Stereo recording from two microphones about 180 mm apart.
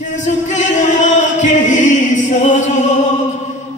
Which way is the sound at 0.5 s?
40° left (ahead or behind).